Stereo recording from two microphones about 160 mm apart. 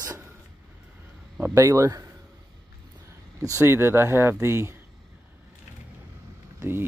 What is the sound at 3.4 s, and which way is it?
Speech, 20° right (ahead or behind).